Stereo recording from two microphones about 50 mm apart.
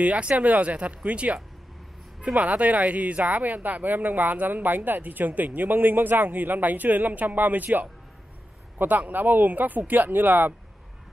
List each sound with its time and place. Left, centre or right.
0.0 s speech: right